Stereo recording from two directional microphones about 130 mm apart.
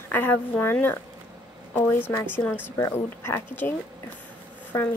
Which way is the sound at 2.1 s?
15° left (ahead or behind).